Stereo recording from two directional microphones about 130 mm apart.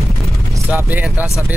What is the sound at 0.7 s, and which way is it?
Speech, 15° right (ahead or behind).